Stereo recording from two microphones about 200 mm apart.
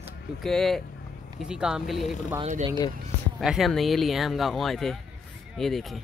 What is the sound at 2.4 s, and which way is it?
Speech, 30° right (ahead or behind).